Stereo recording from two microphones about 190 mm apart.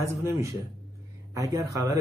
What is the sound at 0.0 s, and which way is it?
Speech, 15° right (ahead or behind).